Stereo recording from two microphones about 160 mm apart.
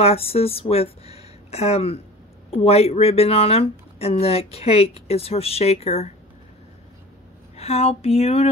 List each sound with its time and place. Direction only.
0.0 s speech: 40° left (ahead or behind)
7.5 s speech: 40° left (ahead or behind)